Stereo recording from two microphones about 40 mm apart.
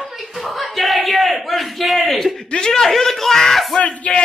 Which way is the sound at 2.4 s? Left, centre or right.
Centre.